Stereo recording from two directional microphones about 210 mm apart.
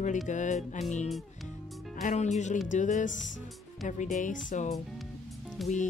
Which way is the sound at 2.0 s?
35° left (ahead or behind).